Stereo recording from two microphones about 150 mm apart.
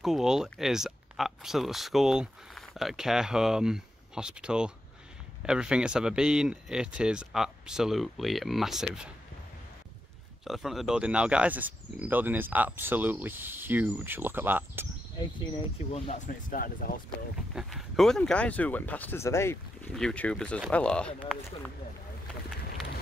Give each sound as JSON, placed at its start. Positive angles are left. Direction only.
{"t": 0.0, "sound": "speech", "side_deg": -5}
{"t": 10.4, "sound": "speech", "side_deg": 0}
{"t": 16.3, "sound": "speech", "side_deg": 70}
{"t": 17.6, "sound": "speech", "side_deg": 0}
{"t": 19.9, "sound": "speech", "side_deg": 5}